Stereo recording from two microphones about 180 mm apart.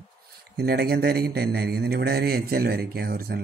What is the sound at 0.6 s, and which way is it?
Speech, 60° right (ahead or behind).